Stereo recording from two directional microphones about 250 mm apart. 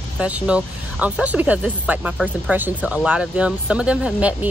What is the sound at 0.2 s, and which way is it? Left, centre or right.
Speech, centre.